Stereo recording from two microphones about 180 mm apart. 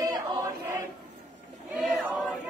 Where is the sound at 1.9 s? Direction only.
Centre (ahead or behind).